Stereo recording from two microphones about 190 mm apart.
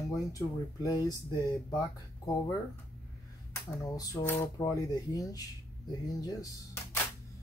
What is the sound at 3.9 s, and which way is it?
Speech, 15° left (ahead or behind).